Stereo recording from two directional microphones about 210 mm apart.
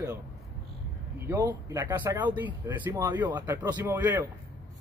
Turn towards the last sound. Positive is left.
turn(degrees=-10)  # may be behind; listen again after turning